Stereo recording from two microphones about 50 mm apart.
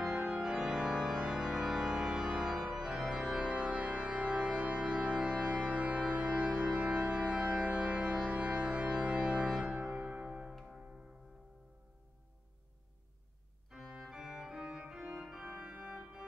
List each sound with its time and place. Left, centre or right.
0.3 s organ: right
3.5 s music: right
8.4 s organ: right
9.9 s music: right
13.7 s organ: centre
15.6 s organ: right
15.9 s organ: centre